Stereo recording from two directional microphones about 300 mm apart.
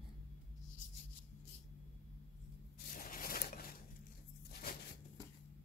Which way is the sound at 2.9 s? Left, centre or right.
Left.